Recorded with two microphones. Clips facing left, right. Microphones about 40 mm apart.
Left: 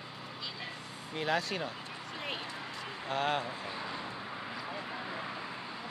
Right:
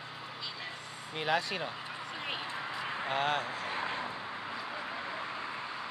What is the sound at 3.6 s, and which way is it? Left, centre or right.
Vehicle, right.